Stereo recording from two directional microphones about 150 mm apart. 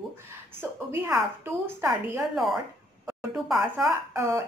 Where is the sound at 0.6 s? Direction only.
15° right (ahead or behind).